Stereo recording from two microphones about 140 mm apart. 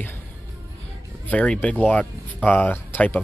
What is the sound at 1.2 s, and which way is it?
Speech, 10° left (ahead or behind).